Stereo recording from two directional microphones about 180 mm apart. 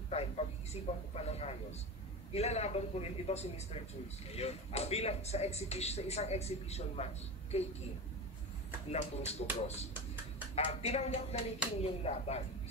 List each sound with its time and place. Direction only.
1.1 s speech: 35° left (ahead or behind)
8.9 s speech: 35° left (ahead or behind)